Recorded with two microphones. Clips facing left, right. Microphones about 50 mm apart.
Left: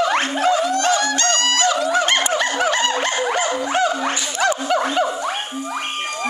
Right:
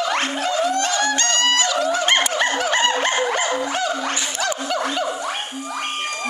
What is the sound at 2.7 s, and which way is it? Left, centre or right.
Dog, right.